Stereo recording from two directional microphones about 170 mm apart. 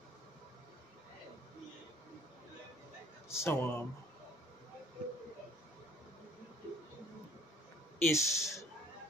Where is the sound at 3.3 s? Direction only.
15° left (ahead or behind).